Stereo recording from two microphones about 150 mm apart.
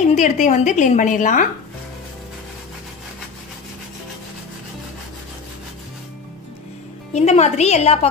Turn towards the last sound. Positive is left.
turn(degrees=45)  # may be behind; listen again after turning